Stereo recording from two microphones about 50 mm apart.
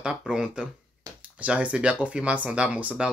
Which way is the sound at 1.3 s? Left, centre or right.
Right.